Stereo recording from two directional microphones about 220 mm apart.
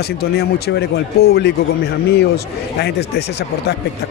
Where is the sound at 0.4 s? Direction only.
45° left (ahead or behind).